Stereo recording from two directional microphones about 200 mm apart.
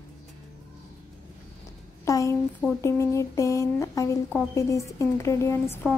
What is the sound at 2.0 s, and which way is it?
A woman's voice, 15° left (ahead or behind).